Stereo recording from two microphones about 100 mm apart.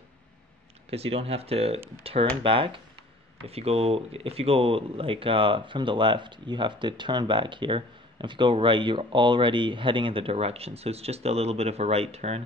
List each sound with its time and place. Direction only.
0.8 s speech: 80° right
2.1 s speech: 75° right (ahead or behind)
2.4 s speech: 60° right (ahead or behind)
3.4 s speech: 90° right